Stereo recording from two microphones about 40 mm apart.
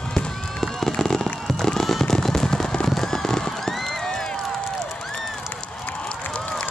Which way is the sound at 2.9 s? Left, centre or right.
Centre.